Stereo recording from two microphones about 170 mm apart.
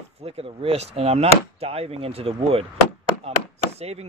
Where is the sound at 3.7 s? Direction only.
40° right (ahead or behind).